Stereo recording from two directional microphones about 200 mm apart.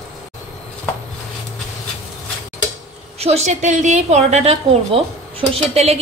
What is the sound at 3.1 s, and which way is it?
A woman's voice, 30° right (ahead or behind).